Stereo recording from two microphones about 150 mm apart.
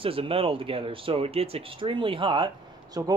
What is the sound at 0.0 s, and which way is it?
Speech, 40° right (ahead or behind).